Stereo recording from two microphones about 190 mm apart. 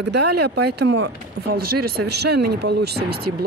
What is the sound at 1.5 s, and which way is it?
Speech, 55° right (ahead or behind).